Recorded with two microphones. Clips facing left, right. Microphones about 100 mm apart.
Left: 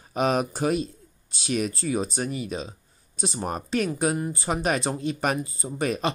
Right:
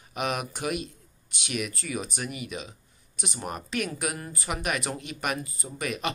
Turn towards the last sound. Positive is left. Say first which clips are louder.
# left 5 dB
turn(degrees=35)  # may be behind; listen again after turning